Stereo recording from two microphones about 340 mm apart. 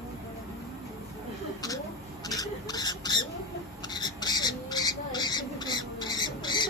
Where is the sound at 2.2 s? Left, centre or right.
Centre.